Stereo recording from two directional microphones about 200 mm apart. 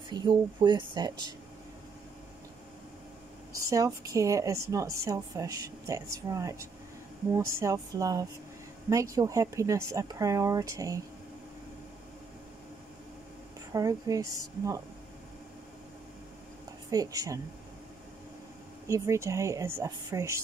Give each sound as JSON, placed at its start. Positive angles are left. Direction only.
{"t": 0.1, "sound": "speech", "side_deg": -20}
{"t": 3.5, "sound": "speech", "side_deg": -15}
{"t": 13.7, "sound": "speech", "side_deg": -15}
{"t": 16.9, "sound": "speech", "side_deg": -20}
{"t": 18.9, "sound": "speech", "side_deg": -15}